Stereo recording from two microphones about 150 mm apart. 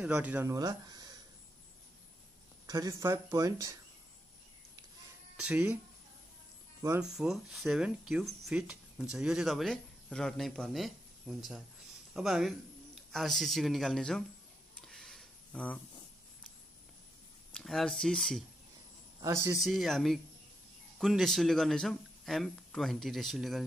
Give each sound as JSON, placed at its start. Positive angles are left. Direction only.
{"t": 0.0, "sound": "speech", "side_deg": -10}
{"t": 0.5, "sound": "speech", "side_deg": -25}
{"t": 2.6, "sound": "speech", "side_deg": -25}
{"t": 5.4, "sound": "speech", "side_deg": -5}
{"t": 7.0, "sound": "speech", "side_deg": -5}
{"t": 14.8, "sound": "a sound", "side_deg": 5}
{"t": 17.5, "sound": "speech", "side_deg": 5}
{"t": 19.2, "sound": "speech", "side_deg": -20}
{"t": 19.5, "sound": "speech", "side_deg": 0}